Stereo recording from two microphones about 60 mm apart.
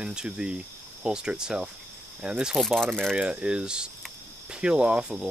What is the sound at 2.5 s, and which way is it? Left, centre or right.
Speech, centre.